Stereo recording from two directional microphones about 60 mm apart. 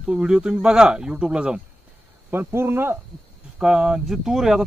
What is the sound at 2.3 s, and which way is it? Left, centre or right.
Speech, right.